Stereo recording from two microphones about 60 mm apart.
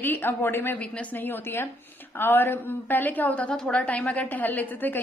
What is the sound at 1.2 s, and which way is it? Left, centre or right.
A woman's voice, left.